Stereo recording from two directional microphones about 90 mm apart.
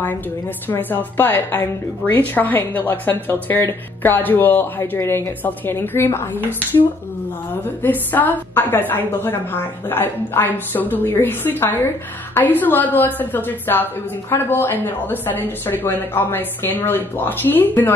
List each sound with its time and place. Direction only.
0.7 s a woman's voice: 20° left (ahead or behind)
7.8 s a woman's voice: 20° left (ahead or behind)